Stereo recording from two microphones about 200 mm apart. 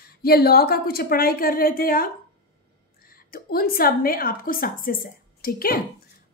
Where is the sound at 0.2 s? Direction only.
50° left (ahead or behind).